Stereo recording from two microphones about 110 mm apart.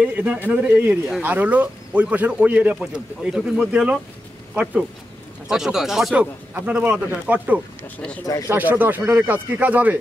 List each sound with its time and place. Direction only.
0.0 s speech: 10° right (ahead or behind)
5.5 s speech: 5° right (ahead or behind)
6.5 s speech: 15° right (ahead or behind)